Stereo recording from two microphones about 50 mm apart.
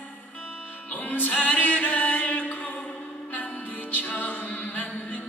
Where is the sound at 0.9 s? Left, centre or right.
Left.